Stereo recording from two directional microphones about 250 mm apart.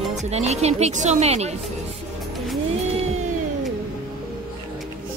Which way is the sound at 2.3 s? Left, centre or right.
Centre.